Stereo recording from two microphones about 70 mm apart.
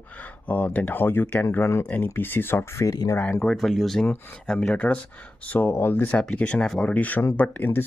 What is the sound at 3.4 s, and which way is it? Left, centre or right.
Speech, centre.